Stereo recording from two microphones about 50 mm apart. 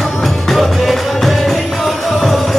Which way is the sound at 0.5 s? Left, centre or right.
Centre.